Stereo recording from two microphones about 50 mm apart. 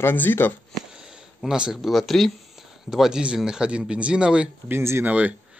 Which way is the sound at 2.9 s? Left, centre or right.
Centre.